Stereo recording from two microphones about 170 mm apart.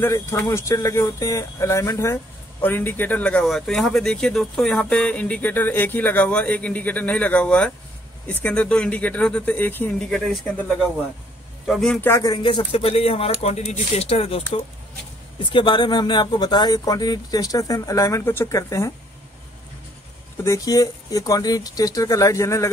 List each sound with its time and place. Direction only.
0.0 s speech: 15° left (ahead or behind)
11.6 s a man's voice: centre (ahead or behind)
12.1 s speech: 20° left (ahead or behind)
20.4 s speech: 20° left (ahead or behind)